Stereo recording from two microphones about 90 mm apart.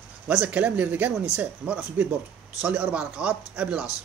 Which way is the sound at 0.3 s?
15° right (ahead or behind).